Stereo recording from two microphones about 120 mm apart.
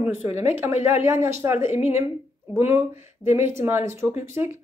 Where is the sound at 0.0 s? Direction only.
15° right (ahead or behind).